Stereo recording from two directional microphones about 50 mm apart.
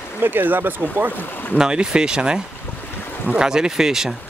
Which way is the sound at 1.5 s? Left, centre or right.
Centre.